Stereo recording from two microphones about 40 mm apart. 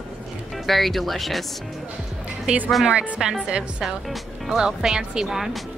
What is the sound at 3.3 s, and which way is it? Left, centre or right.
Speech, right.